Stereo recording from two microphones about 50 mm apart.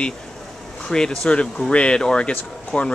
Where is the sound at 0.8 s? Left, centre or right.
Centre.